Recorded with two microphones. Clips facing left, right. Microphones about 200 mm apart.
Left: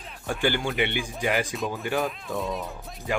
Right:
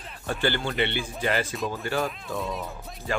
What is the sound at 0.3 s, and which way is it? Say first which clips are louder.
Speech: left 1 dB; 10° left (ahead or behind).